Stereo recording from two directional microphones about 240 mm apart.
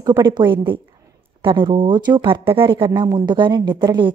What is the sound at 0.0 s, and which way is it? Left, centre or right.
A woman's voice, centre.